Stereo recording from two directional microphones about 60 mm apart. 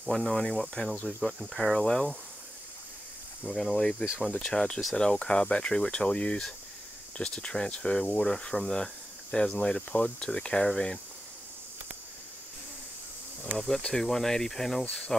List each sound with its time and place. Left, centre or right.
0.0 s speech: centre
1.0 s speech: centre
3.4 s speech: left
4.4 s speech: centre
13.6 s speech: centre